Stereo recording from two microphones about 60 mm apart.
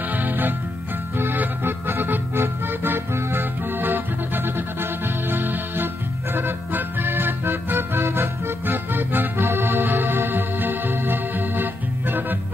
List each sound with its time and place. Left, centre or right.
0.1 s music: right
6.3 s organ: right